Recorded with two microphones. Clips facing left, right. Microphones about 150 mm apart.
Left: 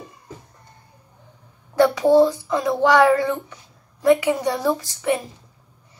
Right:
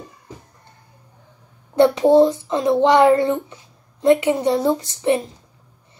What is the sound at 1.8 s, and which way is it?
Speech, 20° right (ahead or behind).